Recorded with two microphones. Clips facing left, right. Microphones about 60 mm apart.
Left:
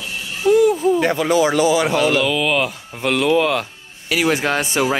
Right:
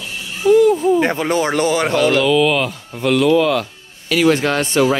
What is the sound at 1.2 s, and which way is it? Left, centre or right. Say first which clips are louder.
Speech: left 1 dB; right.